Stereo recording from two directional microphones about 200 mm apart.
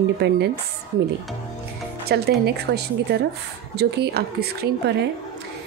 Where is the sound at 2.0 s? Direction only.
55° right (ahead or behind).